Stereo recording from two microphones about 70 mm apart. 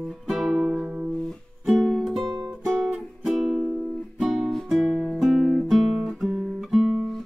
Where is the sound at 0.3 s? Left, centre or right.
Centre.